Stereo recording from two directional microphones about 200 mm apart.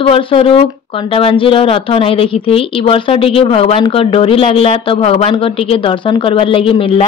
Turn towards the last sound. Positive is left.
turn(degrees=25)  # may be behind; listen again after turning